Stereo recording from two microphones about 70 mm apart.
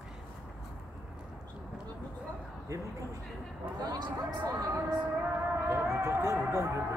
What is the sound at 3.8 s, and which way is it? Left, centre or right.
Speech, right.